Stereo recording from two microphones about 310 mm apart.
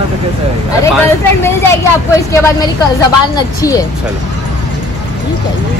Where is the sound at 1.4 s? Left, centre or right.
Centre.